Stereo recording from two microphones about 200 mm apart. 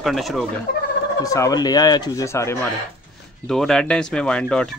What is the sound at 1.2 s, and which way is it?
Speech, 15° left (ahead or behind).